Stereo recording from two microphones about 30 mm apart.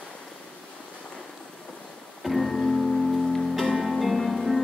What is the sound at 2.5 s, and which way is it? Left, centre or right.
Music, centre.